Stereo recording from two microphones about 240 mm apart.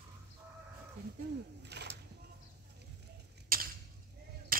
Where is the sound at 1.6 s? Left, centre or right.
Right.